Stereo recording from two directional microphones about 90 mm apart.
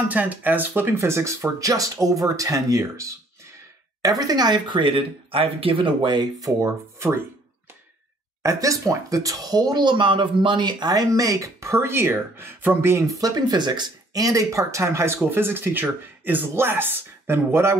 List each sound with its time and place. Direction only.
0.1 s speech: 20° right (ahead or behind); by 6.2 s 60° right (ahead or behind)
6.4 s speech: 30° right (ahead or behind)
8.4 s speech: 35° right (ahead or behind)
13.2 s speech: 45° right (ahead or behind); by 17.7 s 30° right (ahead or behind)